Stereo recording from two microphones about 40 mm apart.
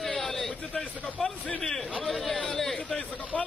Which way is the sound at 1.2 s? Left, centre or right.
Left.